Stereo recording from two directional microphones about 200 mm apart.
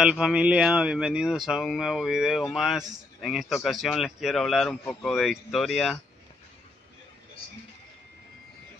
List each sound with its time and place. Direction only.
0.0 s speech: 5° right (ahead or behind)